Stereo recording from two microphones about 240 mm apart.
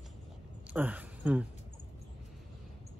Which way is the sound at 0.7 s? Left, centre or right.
Centre.